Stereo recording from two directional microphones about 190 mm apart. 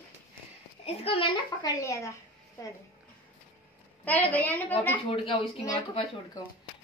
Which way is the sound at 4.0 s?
10° left (ahead or behind).